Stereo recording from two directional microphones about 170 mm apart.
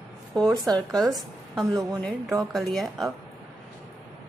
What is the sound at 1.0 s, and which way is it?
A woman's voice, centre (ahead or behind).